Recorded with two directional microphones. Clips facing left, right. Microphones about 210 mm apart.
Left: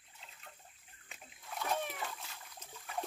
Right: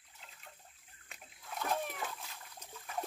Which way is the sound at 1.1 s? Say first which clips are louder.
Even; centre (ahead or behind).